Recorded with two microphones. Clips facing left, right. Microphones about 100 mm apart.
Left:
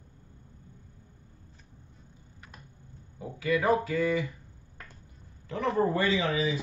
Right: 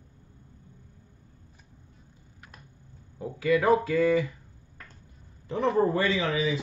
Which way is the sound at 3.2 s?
30° right (ahead or behind).